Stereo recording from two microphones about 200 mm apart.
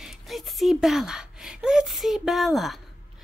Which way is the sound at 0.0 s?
Centre (ahead or behind).